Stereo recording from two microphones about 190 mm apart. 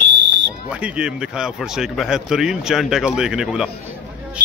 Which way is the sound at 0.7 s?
5° right (ahead or behind).